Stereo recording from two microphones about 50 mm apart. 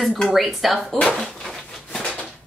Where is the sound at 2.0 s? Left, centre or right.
Left.